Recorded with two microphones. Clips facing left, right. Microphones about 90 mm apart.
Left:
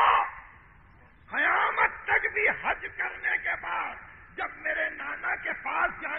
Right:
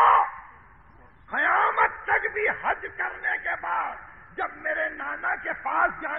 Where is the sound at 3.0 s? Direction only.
35° right (ahead or behind).